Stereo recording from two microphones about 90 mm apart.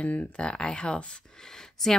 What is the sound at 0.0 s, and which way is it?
A woman's voice, 15° left (ahead or behind).